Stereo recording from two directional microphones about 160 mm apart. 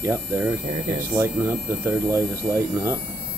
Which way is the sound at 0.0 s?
15° right (ahead or behind).